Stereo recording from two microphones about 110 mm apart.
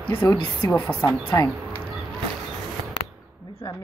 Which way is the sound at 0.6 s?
25° left (ahead or behind).